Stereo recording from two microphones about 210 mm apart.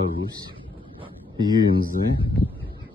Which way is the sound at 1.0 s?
20° right (ahead or behind).